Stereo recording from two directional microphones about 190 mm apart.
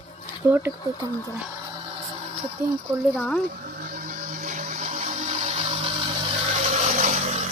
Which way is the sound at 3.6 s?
45° right (ahead or behind).